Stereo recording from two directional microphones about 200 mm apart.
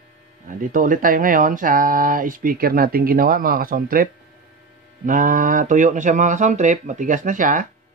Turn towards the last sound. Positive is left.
turn(degrees=-40)  # may be behind; listen again after turning